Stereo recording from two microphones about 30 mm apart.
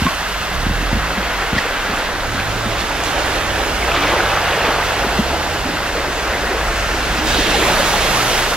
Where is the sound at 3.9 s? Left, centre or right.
Centre.